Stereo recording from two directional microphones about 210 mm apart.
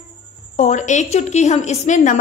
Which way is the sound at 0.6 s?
35° left (ahead or behind).